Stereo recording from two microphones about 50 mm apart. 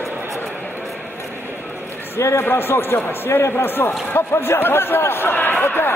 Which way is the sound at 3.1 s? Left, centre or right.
Left.